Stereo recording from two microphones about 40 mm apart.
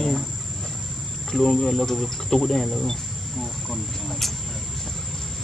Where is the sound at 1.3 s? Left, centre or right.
Centre.